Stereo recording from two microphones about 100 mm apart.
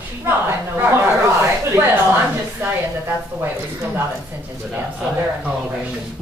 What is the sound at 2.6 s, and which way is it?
A woman's voice, 20° right (ahead or behind).